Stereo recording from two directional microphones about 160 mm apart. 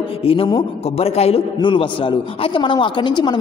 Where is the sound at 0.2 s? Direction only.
35° left (ahead or behind).